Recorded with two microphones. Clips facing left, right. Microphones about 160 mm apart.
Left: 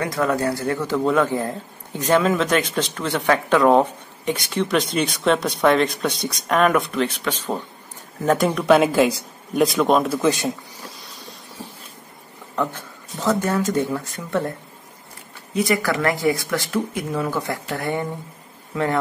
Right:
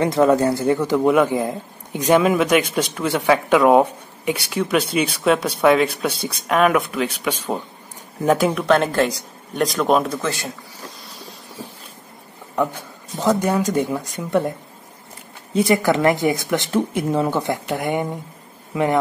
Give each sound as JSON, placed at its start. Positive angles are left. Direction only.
{"t": 0.0, "sound": "a man's voice", "side_deg": -20}
{"t": 8.6, "sound": "speech", "side_deg": 5}
{"t": 10.2, "sound": "a man's voice", "side_deg": 20}
{"t": 13.2, "sound": "a man's voice", "side_deg": -15}
{"t": 15.5, "sound": "speech", "side_deg": -25}